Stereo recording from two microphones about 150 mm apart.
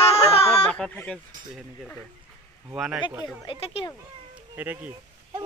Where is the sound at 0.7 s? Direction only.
10° left (ahead or behind).